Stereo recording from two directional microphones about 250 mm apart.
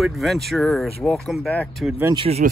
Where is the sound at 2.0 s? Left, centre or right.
Centre.